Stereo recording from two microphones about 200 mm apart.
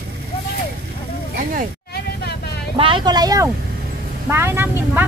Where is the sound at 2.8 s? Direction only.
25° right (ahead or behind).